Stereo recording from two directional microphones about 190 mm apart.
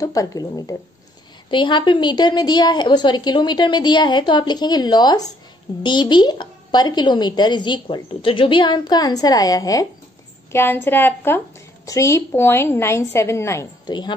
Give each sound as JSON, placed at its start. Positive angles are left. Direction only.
{"t": 0.0, "sound": "a woman's voice", "side_deg": 20}